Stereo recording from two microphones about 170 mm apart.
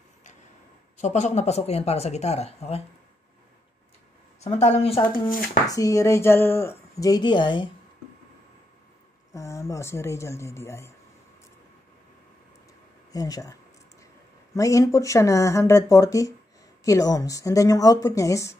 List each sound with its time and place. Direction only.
0.9 s speech: 45° left (ahead or behind)
4.4 s speech: 40° left (ahead or behind)
5.7 s speech: 20° left (ahead or behind)
9.3 s speech: 20° left (ahead or behind)
13.1 s speech: 20° left (ahead or behind)